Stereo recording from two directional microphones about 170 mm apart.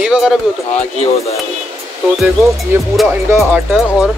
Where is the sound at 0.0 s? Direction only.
5° right (ahead or behind).